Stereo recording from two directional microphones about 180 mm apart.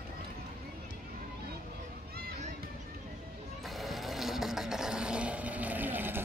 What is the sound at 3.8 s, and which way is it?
Vehicle, centre (ahead or behind).